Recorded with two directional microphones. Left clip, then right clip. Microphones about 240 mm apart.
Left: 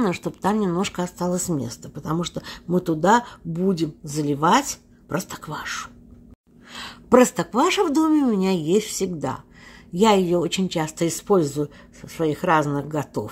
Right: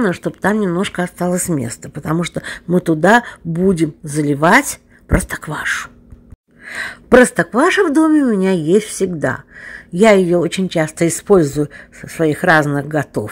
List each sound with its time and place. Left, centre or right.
0.0 s speech: centre